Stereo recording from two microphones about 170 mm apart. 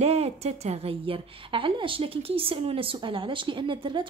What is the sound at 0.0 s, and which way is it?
A woman's voice, 40° right (ahead or behind).